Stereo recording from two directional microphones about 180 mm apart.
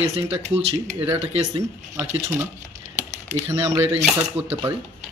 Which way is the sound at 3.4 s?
15° right (ahead or behind).